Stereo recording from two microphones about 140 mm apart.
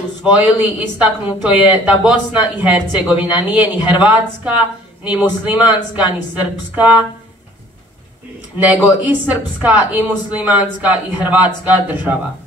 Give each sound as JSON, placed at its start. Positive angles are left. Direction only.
{"t": 0.2, "sound": "speech", "side_deg": -10}
{"t": 8.5, "sound": "speech", "side_deg": -10}